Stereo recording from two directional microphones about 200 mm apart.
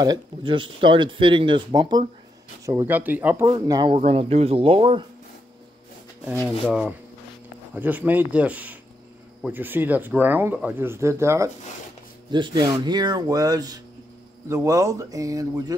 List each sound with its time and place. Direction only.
0.0 s speech: 20° right (ahead or behind)
3.9 s speech: 30° right (ahead or behind)
6.3 s speech: centre (ahead or behind); by 15.6 s 15° right (ahead or behind)